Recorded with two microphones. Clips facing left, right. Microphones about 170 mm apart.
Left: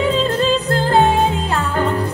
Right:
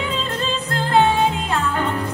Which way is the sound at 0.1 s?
35° left (ahead or behind).